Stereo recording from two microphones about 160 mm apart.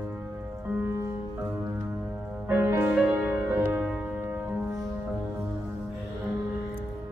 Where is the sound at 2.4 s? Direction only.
15° right (ahead or behind).